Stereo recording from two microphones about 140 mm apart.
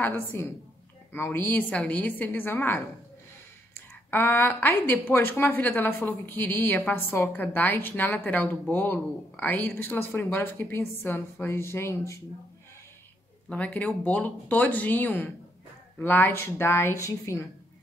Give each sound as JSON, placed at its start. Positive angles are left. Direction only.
{"t": 0.0, "sound": "a woman's voice", "side_deg": 15}
{"t": 4.1, "sound": "a woman's voice", "side_deg": 15}
{"t": 13.5, "sound": "a woman's voice", "side_deg": 5}